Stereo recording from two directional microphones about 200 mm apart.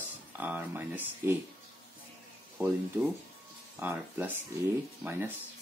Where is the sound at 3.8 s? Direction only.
10° right (ahead or behind).